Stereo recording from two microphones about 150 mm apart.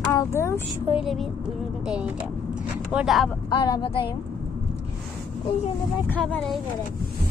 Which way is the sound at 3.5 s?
30° left (ahead or behind).